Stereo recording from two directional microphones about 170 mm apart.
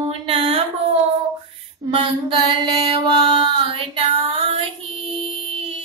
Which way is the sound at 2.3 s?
25° right (ahead or behind).